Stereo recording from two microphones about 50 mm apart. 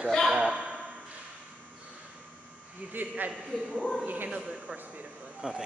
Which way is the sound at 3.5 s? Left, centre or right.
Centre.